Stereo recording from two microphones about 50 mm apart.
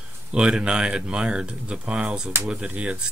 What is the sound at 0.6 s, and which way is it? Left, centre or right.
Speech, centre.